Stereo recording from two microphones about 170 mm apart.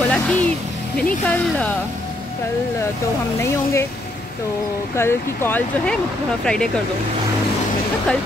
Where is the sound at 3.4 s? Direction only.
15° left (ahead or behind).